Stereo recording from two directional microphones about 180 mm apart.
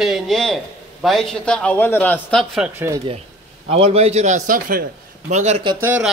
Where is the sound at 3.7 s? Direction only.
35° right (ahead or behind); by 4.8 s 50° right (ahead or behind).